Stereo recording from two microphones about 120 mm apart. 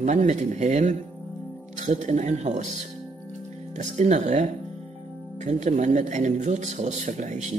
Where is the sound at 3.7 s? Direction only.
75° right (ahead or behind).